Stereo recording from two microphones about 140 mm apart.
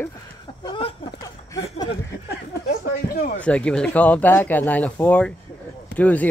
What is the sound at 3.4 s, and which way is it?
Speech, 10° left (ahead or behind).